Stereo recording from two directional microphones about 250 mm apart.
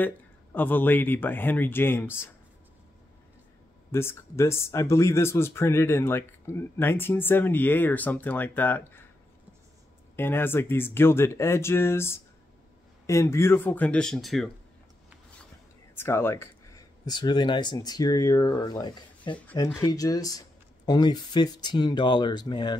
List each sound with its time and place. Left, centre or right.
0.0 s speech: centre
3.9 s speech: centre
10.1 s speech: centre
15.9 s speech: centre